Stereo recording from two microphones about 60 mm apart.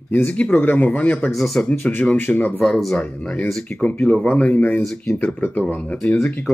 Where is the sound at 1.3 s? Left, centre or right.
Centre.